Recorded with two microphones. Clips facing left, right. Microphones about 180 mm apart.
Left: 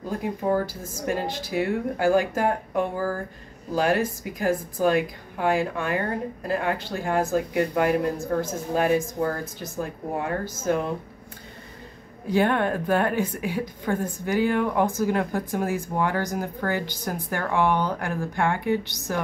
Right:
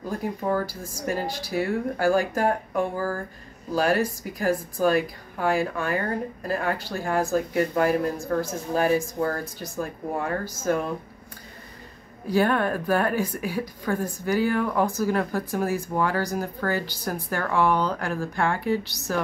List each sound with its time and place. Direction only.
0.1 s speech: 20° left (ahead or behind)
12.3 s speech: 20° left (ahead or behind)